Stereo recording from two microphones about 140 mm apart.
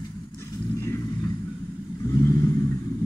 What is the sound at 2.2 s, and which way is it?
Vehicle, 20° left (ahead or behind).